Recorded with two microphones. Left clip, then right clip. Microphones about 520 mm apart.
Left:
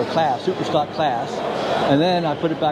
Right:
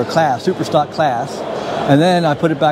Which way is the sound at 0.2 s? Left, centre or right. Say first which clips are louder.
Right 6 dB; right.